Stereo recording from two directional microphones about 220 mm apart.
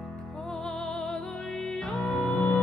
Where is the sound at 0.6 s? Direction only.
Centre (ahead or behind).